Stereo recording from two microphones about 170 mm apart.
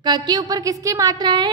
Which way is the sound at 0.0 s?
25° right (ahead or behind).